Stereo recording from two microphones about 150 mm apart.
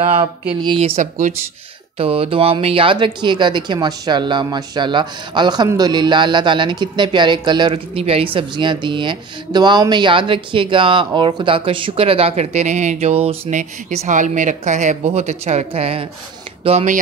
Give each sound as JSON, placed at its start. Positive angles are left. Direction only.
{"t": 0.7, "sound": "speech", "side_deg": -40}
{"t": 2.0, "sound": "speech", "side_deg": -40}